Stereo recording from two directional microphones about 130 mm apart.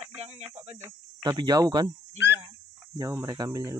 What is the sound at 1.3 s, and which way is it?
Speech, 30° right (ahead or behind).